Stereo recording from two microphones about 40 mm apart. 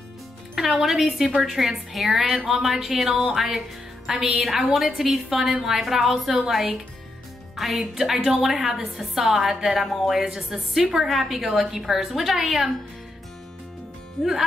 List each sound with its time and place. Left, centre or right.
0.8 s a woman's voice: centre
4.1 s a woman's voice: centre
4.4 s a woman's voice: centre